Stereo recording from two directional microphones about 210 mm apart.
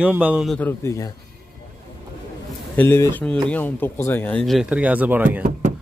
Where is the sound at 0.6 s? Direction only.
10° left (ahead or behind).